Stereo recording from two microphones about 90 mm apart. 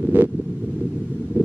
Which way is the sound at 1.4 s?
20° right (ahead or behind).